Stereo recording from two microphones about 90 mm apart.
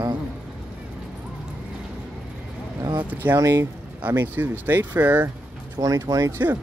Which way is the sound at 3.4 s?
35° right (ahead or behind).